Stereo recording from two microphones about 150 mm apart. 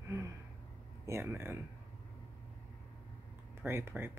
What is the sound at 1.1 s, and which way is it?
Speech, 15° right (ahead or behind).